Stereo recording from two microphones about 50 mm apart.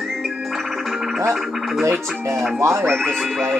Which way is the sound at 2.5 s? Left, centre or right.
Right.